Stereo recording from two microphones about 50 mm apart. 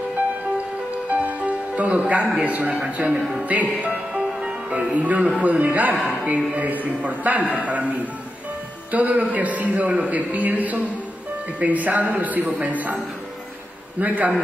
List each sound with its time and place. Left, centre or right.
1.1 s music: right
2.3 s a man's voice: right
3.9 s a man's voice: centre; by 7.8 s right
8.9 s a man's voice: right